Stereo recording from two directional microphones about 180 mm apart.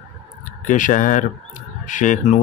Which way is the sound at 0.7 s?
45° left (ahead or behind).